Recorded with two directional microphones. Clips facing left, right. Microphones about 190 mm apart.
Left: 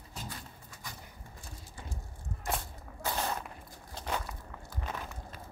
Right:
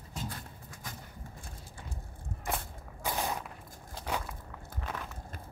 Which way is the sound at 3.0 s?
15° right (ahead or behind).